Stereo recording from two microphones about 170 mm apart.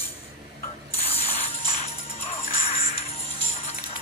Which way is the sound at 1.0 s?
35° left (ahead or behind).